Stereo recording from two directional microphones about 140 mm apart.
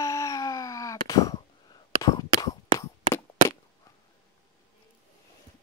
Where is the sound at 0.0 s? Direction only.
25° left (ahead or behind).